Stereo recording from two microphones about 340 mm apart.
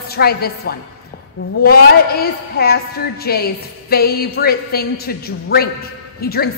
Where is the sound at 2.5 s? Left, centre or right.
Left.